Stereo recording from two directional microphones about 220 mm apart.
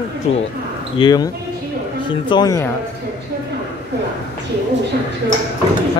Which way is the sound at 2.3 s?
15° left (ahead or behind).